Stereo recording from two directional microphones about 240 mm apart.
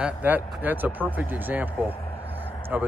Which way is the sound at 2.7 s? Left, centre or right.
Centre.